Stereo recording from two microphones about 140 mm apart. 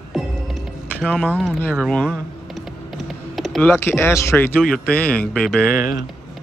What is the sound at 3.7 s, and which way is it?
A man's voice, 15° left (ahead or behind).